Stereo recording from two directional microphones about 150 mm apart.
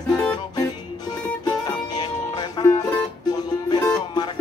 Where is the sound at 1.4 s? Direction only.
30° left (ahead or behind).